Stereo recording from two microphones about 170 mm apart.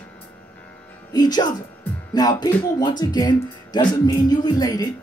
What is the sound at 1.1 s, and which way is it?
Speech, 25° left (ahead or behind).